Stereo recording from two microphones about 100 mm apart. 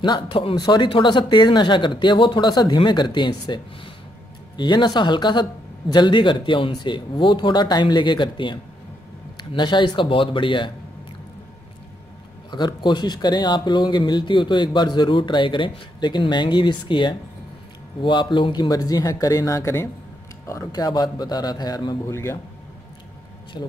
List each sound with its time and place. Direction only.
0.0 s speech: 50° left (ahead or behind)
12.4 s speech: 50° left (ahead or behind)
22.0 s speech: 25° left (ahead or behind)
23.6 s speech: 45° left (ahead or behind)